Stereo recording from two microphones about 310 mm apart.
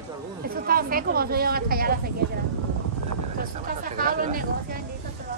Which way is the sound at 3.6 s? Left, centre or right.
Right.